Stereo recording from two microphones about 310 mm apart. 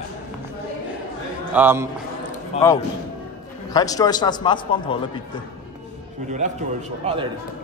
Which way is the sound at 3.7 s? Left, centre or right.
Centre.